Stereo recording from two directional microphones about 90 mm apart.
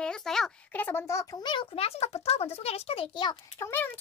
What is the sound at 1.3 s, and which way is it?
Speech, 60° left (ahead or behind).